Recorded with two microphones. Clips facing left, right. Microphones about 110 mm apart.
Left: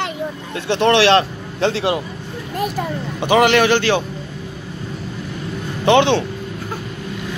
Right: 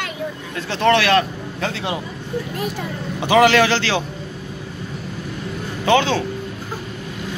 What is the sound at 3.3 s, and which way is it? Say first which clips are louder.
Speech: even; 15° left (ahead or behind).